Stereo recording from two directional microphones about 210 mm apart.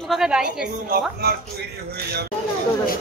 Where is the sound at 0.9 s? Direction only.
50° right (ahead or behind).